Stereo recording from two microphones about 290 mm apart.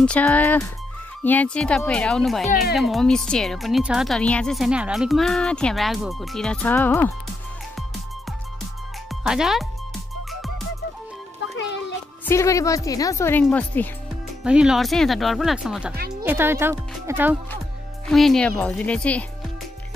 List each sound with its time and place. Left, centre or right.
0.0 s speech: centre
9.1 s speech: centre
12.3 s speech: centre
15.9 s speech: right
16.3 s speech: centre